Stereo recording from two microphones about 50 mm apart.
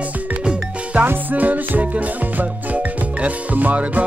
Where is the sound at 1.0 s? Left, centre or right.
Right.